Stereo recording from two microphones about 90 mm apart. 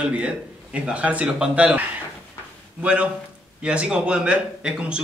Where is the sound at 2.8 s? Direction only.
15° right (ahead or behind).